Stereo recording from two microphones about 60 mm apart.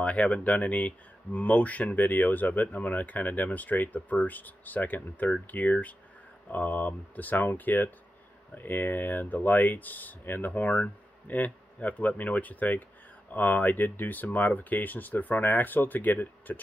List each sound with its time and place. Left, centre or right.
0.0 s speech: left